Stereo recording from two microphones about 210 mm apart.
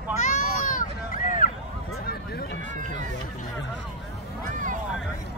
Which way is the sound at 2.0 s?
50° left (ahead or behind).